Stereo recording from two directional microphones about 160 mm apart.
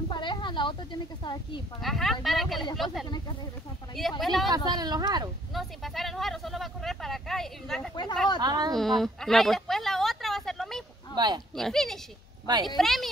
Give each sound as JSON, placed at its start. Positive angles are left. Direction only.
{"t": 0.1, "sound": "a sound", "side_deg": 30}
{"t": 1.2, "sound": "a woman's voice", "side_deg": 30}
{"t": 1.8, "sound": "speech", "side_deg": 0}
{"t": 4.2, "sound": "speech", "side_deg": 0}
{"t": 4.5, "sound": "speech", "side_deg": -25}
{"t": 5.5, "sound": "speech", "side_deg": 0}
{"t": 7.9, "sound": "a woman's voice", "side_deg": 25}
{"t": 8.4, "sound": "speech", "side_deg": -25}
{"t": 8.7, "sound": "speech", "side_deg": 0}
{"t": 11.1, "sound": "speech", "side_deg": -25}
{"t": 11.5, "sound": "speech", "side_deg": 0}